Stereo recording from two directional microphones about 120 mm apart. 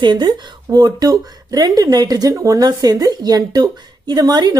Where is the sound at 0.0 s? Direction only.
40° right (ahead or behind).